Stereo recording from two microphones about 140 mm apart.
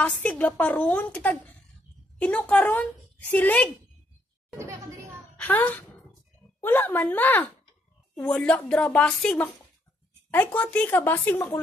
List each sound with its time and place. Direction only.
0.0 s a woman's voice: 10° left (ahead or behind)
4.6 s a sound: 20° right (ahead or behind)
5.4 s a woman's voice: 15° left (ahead or behind)